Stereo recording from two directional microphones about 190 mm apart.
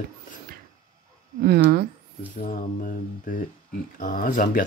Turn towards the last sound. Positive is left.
turn(degrees=45)  # may be behind; listen again after turning